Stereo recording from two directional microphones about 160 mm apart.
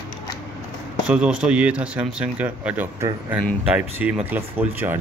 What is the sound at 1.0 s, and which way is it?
Speech, 5° right (ahead or behind).